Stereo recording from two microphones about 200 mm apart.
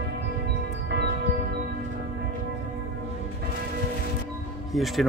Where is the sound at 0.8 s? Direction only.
55° right (ahead or behind).